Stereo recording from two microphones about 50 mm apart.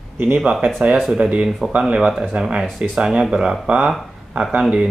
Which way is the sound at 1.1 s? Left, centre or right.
Centre.